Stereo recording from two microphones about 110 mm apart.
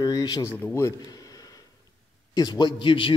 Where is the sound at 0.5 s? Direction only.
15° left (ahead or behind).